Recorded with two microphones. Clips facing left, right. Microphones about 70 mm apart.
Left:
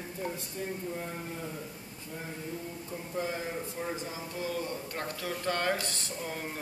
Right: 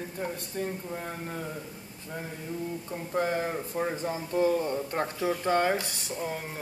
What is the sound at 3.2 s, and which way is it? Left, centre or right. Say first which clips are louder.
A man's voice: right 6 dB; right.